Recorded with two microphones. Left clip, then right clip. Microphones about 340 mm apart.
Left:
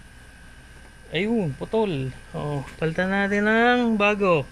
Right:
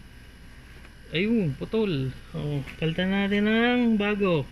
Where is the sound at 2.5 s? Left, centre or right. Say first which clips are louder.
Left 3 dB; left.